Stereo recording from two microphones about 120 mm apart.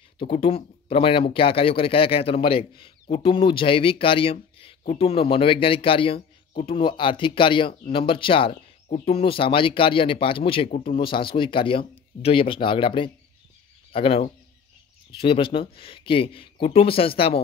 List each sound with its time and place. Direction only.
0.2 s speech: 50° left (ahead or behind)
8.8 s speech: 90° left
9.1 s speech: 50° left (ahead or behind)